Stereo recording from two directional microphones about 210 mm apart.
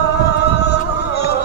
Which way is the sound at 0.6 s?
50° left (ahead or behind).